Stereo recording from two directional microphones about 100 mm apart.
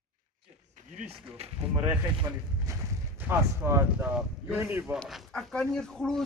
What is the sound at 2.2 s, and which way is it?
A man's voice, 25° right (ahead or behind).